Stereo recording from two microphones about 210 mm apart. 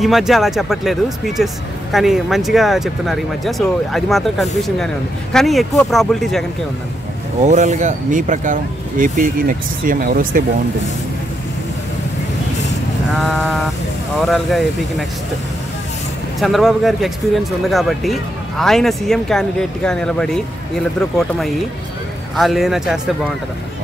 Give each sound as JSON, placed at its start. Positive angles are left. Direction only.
{"t": 0.0, "sound": "speech", "side_deg": 0}
{"t": 7.4, "sound": "speech", "side_deg": -35}
{"t": 13.1, "sound": "speech", "side_deg": 0}
{"t": 16.3, "sound": "speech", "side_deg": 0}